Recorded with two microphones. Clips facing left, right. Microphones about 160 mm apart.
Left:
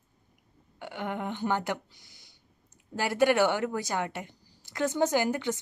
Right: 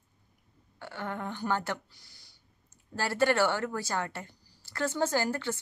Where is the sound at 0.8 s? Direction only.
15° left (ahead or behind).